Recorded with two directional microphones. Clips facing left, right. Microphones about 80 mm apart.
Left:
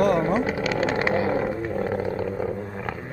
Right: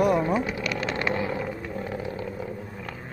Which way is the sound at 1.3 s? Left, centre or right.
Left.